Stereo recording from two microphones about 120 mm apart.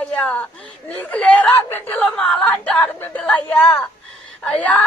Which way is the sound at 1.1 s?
10° left (ahead or behind).